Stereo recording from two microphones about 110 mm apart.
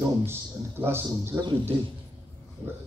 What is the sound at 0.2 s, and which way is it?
Speech, 20° right (ahead or behind).